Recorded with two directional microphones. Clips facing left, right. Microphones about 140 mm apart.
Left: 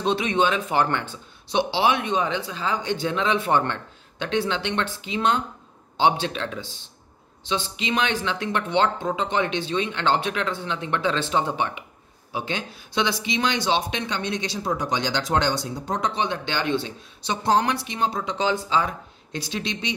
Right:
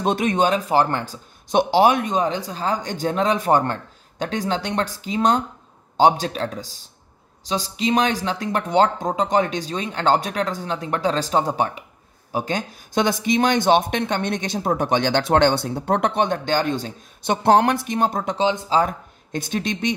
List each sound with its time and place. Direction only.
0.0 s speech: 45° right (ahead or behind)